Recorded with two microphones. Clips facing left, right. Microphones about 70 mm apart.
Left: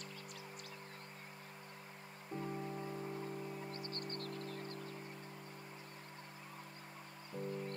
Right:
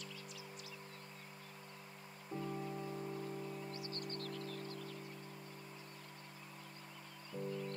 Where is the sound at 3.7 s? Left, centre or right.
Left.